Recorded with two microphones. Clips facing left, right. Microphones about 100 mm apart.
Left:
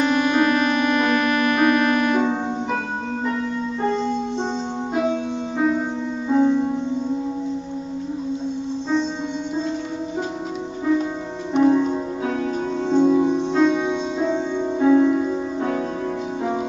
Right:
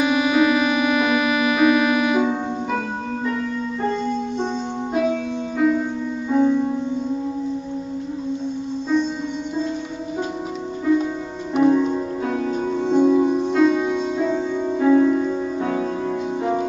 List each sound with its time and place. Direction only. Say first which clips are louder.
0.0 s music: right 1 dB; 5° right (ahead or behind)
5.6 s music: right 2 dB; 25° left (ahead or behind)
11.5 s music: even; centre (ahead or behind)
14.9 s music: even; 10° left (ahead or behind)